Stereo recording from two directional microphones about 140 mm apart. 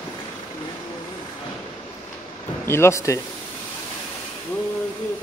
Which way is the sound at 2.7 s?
20° left (ahead or behind).